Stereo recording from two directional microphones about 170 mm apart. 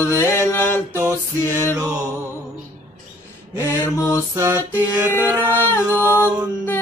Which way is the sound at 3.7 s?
15° left (ahead or behind).